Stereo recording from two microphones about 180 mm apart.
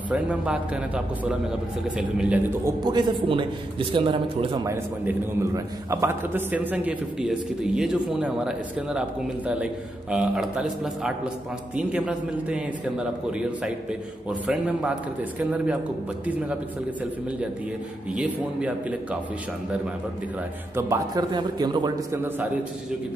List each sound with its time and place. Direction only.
0.1 s a man's voice: 5° right (ahead or behind)
2.8 s a man's voice: 25° right (ahead or behind); by 9.0 s 5° right (ahead or behind)
10.1 s a man's voice: 5° right (ahead or behind)
18.1 s a man's voice: 5° right (ahead or behind)
20.7 s a man's voice: 20° right (ahead or behind)
22.1 s a man's voice: 10° right (ahead or behind)